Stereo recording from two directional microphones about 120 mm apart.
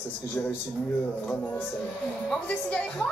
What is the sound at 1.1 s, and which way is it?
Speech, 15° left (ahead or behind).